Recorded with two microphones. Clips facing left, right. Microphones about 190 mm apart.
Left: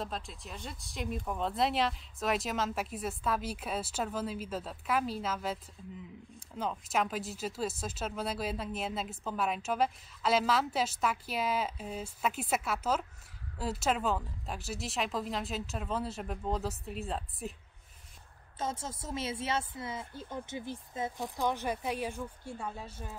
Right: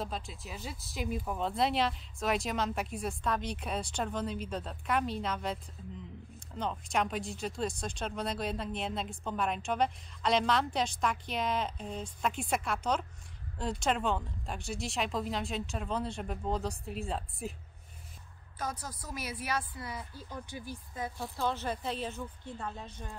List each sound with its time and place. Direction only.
0.0 s speech: centre (ahead or behind)
18.6 s a woman's voice: 25° left (ahead or behind); by 23.1 s 5° left (ahead or behind)